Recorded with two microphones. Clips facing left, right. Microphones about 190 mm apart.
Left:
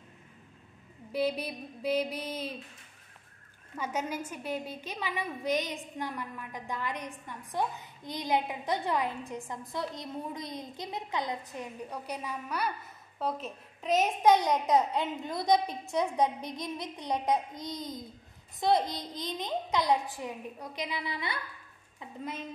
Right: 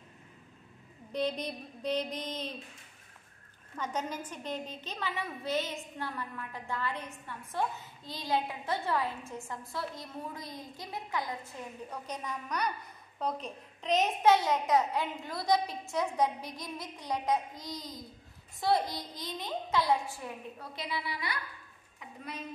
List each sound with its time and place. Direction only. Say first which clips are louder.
1.1 s a woman's voice: left 2 dB; 10° left (ahead or behind)
3.7 s a woman's voice: left 2 dB; 10° left (ahead or behind)